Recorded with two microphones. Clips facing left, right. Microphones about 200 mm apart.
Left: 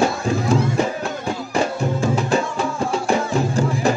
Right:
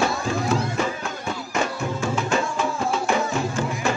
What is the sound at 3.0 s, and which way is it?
Music, 35° left (ahead or behind).